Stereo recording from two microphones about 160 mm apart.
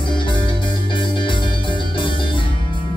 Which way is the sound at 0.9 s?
30° left (ahead or behind).